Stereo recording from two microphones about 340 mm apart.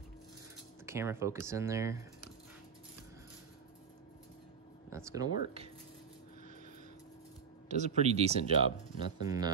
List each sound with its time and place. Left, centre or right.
0.8 s speech: centre
4.9 s speech: centre
7.6 s speech: centre